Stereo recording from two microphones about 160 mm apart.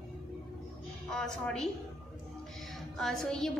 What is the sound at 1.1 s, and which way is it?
Speech, 5° left (ahead or behind).